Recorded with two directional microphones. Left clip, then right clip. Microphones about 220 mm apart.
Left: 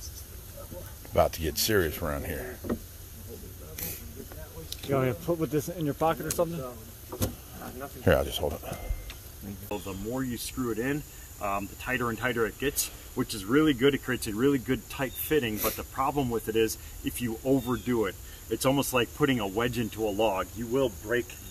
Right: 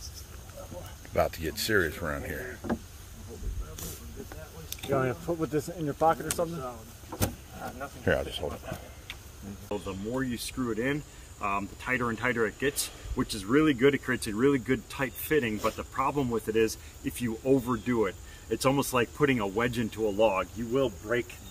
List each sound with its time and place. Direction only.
1.1 s speech: 20° left (ahead or behind)
4.9 s speech: 45° left (ahead or behind)
8.0 s speech: 30° left (ahead or behind)
9.7 s speech: 5° left (ahead or behind)